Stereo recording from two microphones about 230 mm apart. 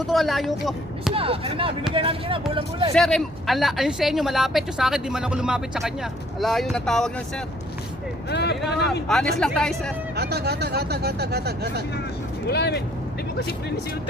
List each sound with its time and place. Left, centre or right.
0.0 s speech: centre
1.1 s speech: right
2.9 s speech: centre
8.3 s speech: left
9.0 s speech: centre
10.1 s speech: right
12.4 s speech: left